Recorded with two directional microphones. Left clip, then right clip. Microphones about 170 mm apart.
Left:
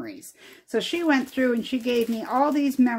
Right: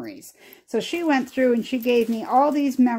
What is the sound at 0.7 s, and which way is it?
Speech, 20° right (ahead or behind).